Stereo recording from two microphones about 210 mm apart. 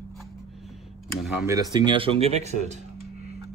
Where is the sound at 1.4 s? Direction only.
15° right (ahead or behind).